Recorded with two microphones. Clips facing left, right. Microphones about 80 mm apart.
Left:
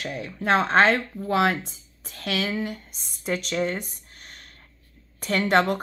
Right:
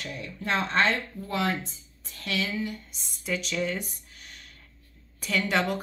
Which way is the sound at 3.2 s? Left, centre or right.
Left.